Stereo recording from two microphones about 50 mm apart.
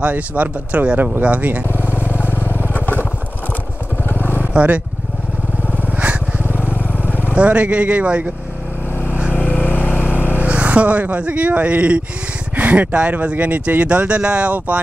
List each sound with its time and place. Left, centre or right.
0.0 s speech: right
1.9 s vehicle: right
2.1 s vehicle: left
4.1 s vehicle: left
4.6 s speech: right
5.9 s vehicle: right
6.4 s vehicle: left
7.3 s speech: right
9.3 s vehicle: left
10.3 s speech: right